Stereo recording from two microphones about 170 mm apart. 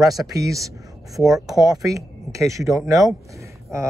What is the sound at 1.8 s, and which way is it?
Speech, 20° right (ahead or behind).